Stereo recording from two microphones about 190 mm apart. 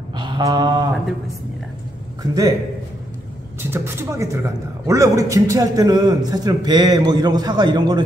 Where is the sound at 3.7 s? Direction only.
15° right (ahead or behind).